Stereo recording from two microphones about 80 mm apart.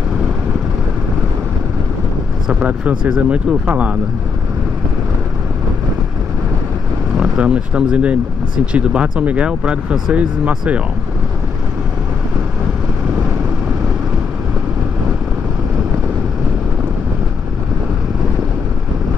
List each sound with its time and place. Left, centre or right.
2.4 s speech: centre
7.2 s speech: centre